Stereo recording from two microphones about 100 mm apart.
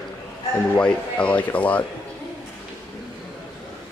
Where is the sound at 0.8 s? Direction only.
10° left (ahead or behind).